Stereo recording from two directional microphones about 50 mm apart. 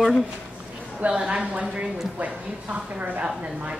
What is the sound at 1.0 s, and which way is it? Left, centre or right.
A woman's voice, right.